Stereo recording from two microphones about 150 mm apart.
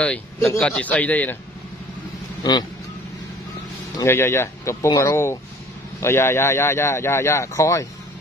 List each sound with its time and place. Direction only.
0.0 s a man's voice: 10° left (ahead or behind)
4.0 s a man's voice: 15° left (ahead or behind)